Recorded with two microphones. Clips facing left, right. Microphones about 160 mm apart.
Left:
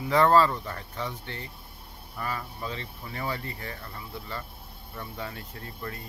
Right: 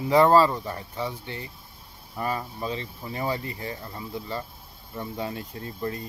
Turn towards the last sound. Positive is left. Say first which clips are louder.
# right 7 dB
turn(degrees=-25)  # may be behind; listen again after turning